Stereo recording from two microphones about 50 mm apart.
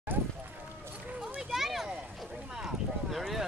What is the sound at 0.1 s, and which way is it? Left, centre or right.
Run, right.